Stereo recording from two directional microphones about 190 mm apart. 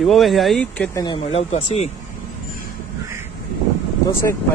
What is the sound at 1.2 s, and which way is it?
Speech, 35° left (ahead or behind).